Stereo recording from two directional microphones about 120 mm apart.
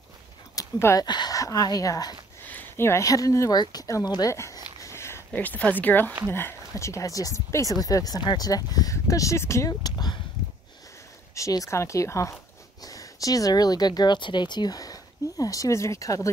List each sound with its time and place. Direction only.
0.6 s a sound: 25° left (ahead or behind)
1.0 s speech: 35° left (ahead or behind)
2.4 s speech: 15° left (ahead or behind)
6.7 s speech: 25° left (ahead or behind)
11.3 s speech: 25° left (ahead or behind)